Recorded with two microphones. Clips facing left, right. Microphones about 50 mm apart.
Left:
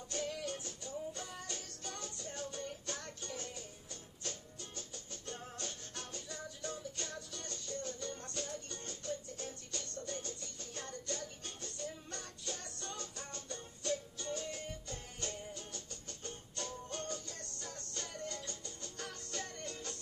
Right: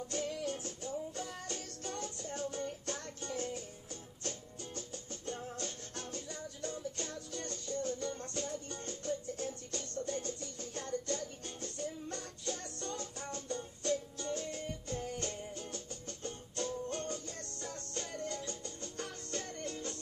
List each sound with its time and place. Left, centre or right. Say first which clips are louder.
0.1 s music: right 1 dB; right